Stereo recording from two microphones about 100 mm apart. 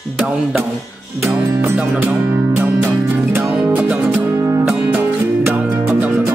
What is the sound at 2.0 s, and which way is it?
Music, 20° right (ahead or behind).